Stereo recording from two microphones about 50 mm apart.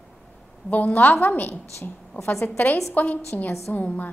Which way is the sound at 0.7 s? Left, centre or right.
Left.